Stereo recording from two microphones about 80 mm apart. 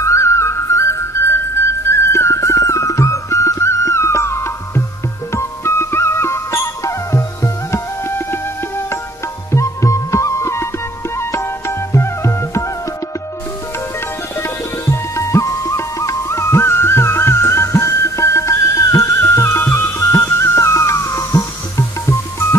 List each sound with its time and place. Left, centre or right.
0.0 s music: left
9.5 s music: left
14.4 s music: left